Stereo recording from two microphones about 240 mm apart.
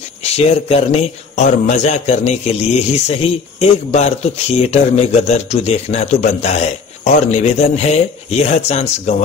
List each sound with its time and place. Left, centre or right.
0.2 s speech: left